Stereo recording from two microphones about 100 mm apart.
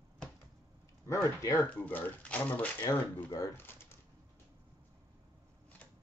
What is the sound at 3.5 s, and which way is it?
Typewriter, 20° left (ahead or behind).